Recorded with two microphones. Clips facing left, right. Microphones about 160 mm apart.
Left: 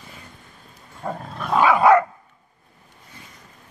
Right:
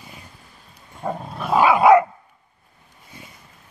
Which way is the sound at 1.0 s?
15° right (ahead or behind).